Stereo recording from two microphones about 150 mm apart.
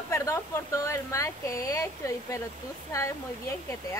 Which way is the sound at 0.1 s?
20° left (ahead or behind).